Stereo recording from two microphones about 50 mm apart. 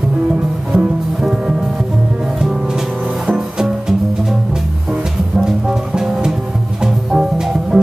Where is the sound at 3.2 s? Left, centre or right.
Centre.